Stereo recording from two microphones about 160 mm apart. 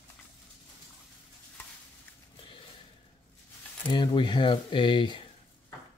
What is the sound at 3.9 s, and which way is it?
Speech, 30° left (ahead or behind).